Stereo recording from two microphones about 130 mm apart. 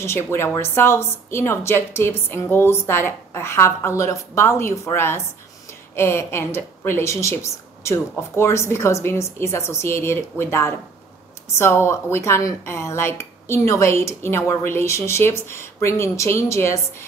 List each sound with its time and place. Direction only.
0.0 s speech: 20° left (ahead or behind)